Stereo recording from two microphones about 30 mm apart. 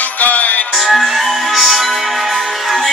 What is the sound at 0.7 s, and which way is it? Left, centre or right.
Music, centre.